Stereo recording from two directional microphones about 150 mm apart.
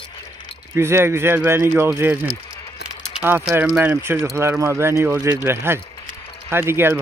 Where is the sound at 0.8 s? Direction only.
15° right (ahead or behind).